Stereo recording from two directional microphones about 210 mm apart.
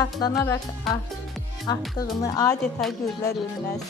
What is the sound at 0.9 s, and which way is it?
Music, centre (ahead or behind).